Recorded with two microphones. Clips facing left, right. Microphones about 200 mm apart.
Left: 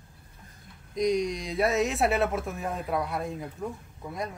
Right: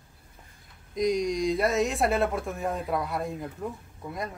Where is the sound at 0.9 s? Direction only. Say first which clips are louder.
Right 1 dB; centre (ahead or behind).